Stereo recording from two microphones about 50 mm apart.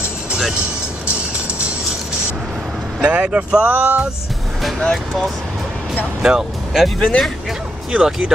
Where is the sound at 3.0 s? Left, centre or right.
Right.